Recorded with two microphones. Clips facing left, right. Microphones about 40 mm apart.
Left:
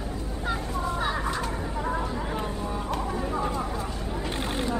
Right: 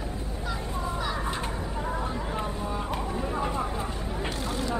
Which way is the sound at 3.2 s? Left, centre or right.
Centre.